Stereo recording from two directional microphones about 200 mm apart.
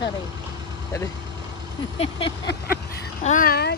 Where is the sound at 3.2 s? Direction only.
40° left (ahead or behind).